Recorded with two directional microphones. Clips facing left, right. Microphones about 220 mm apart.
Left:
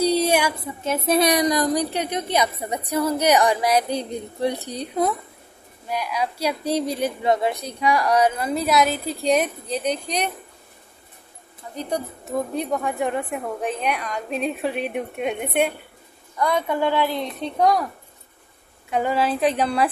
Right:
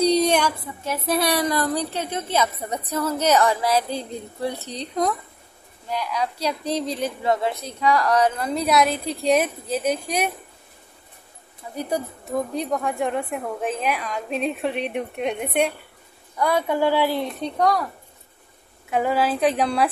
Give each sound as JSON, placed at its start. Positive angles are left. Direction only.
{"t": 0.0, "sound": "a sound", "side_deg": 5}
{"t": 0.8, "sound": "a woman's voice", "side_deg": 20}
{"t": 11.7, "sound": "speech", "side_deg": -10}
{"t": 12.3, "sound": "a woman's voice", "side_deg": 0}
{"t": 17.4, "sound": "a woman's voice", "side_deg": 0}
{"t": 18.9, "sound": "a woman's voice", "side_deg": 0}